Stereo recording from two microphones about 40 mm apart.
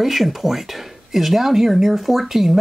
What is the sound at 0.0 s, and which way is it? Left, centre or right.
Speech, centre.